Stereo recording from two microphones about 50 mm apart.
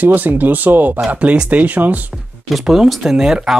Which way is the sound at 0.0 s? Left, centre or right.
Right.